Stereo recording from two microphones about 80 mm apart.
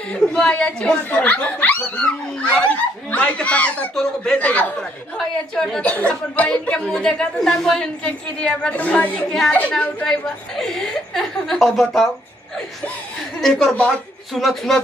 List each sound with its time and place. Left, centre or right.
0.1 s a woman's voice: centre
5.1 s a woman's voice: centre
13.4 s a woman's voice: centre